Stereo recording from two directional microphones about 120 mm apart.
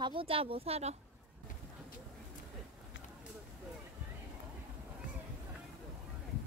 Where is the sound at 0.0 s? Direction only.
50° right (ahead or behind).